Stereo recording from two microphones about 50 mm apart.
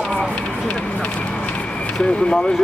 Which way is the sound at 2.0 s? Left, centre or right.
Centre.